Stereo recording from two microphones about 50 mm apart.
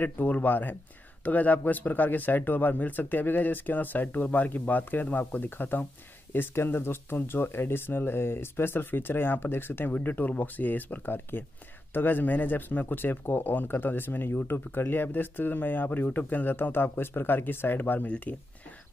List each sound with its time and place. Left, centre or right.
0.0 s speech: left